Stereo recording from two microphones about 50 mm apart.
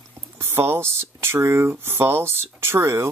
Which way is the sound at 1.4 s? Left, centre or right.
Right.